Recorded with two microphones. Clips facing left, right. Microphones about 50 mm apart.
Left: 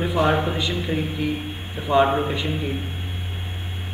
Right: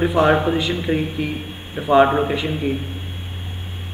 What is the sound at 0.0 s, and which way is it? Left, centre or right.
Speech, centre.